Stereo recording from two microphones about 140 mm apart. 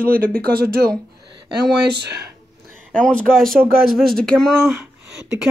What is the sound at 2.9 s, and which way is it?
Speech, 5° left (ahead or behind).